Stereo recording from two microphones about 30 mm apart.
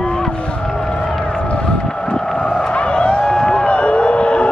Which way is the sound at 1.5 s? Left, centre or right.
Left.